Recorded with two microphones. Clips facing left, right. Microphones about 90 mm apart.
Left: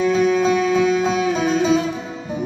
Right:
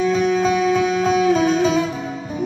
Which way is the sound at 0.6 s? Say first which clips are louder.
Left 1 dB; 10° right (ahead or behind).